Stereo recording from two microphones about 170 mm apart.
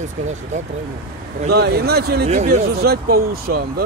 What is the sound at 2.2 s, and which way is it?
Speech, 40° right (ahead or behind).